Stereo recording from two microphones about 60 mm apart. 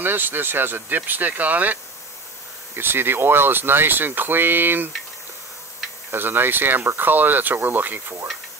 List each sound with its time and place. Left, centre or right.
0.0 s speech: right
2.7 s speech: right
6.1 s speech: right